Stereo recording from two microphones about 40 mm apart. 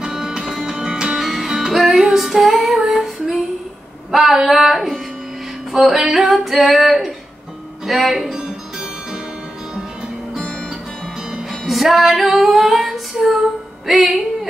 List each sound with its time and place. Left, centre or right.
0.0 s music: centre
0.7 s music: centre
1.1 s music: centre
4.1 s female singing: centre
7.8 s speech: centre
8.4 s music: right
11.6 s female singing: centre
13.8 s music: centre